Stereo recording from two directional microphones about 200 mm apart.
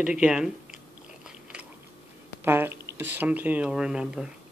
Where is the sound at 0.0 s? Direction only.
5° right (ahead or behind).